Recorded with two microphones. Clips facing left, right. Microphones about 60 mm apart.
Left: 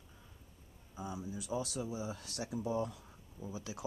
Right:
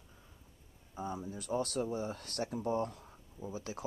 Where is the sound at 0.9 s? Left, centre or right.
Right.